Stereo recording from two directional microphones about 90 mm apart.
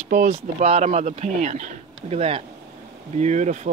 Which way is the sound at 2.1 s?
90° right.